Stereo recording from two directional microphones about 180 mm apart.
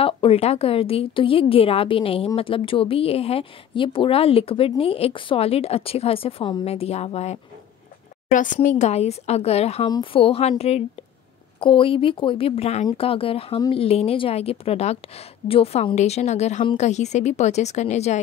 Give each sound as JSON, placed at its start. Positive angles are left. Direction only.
{"t": 0.0, "sound": "a woman's voice", "side_deg": 30}
{"t": 8.3, "sound": "a woman's voice", "side_deg": 45}